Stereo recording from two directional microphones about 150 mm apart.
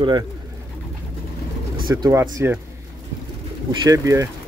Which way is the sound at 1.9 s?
20° right (ahead or behind).